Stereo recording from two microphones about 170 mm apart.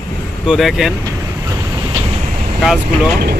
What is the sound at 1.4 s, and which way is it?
Vehicle, 20° right (ahead or behind).